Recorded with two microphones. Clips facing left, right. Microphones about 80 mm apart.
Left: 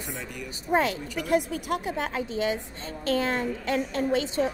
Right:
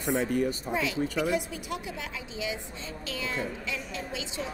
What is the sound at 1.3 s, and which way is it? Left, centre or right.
A woman's voice, left.